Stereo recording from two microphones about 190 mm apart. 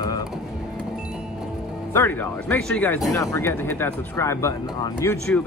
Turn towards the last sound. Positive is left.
turn(degrees=15)  # may be behind; listen again after turning